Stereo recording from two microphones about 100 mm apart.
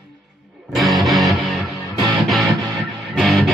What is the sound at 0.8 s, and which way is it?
Music, centre (ahead or behind).